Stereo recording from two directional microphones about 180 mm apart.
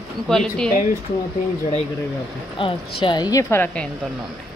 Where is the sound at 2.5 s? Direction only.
30° left (ahead or behind); by 3.8 s 10° left (ahead or behind).